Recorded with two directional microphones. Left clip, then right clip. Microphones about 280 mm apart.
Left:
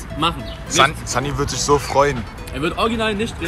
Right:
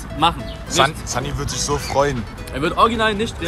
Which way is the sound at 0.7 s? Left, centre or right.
Centre.